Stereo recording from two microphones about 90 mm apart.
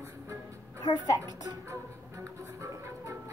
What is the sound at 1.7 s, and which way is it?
Music, 35° right (ahead or behind).